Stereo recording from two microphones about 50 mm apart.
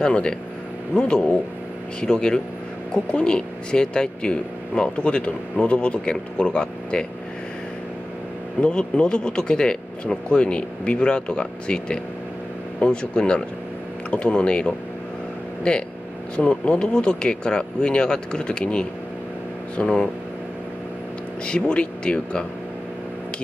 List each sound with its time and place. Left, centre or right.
0.0 s speech: centre
8.5 s speech: left
21.5 s speech: centre